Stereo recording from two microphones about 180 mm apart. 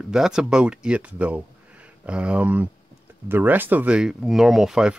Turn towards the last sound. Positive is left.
turn(degrees=-5)  # may be behind; listen again after turning